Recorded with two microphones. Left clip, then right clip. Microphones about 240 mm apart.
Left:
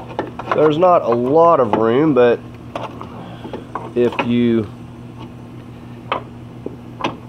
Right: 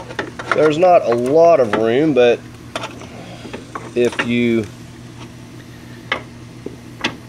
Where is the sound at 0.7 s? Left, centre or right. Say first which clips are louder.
Right 3 dB; left.